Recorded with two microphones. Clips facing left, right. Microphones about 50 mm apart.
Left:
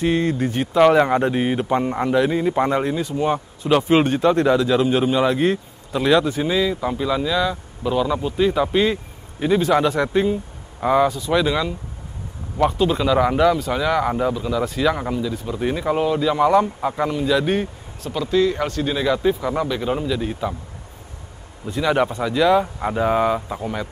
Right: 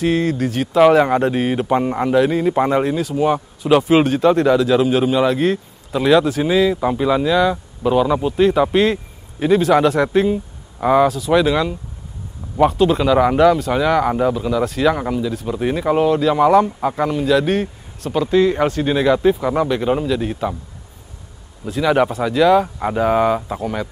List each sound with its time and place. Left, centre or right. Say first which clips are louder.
0.0 s speech: right 2 dB; centre
0.3 s speech: right 2 dB; centre
0.7 s a man's voice: right 2 dB; centre
18.1 s a man's voice: right 4 dB; centre
21.6 s speech: right 3 dB; centre